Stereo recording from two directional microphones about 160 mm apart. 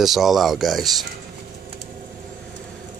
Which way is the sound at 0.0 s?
Centre (ahead or behind).